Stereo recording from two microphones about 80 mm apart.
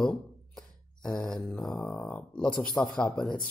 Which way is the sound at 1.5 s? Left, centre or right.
Centre.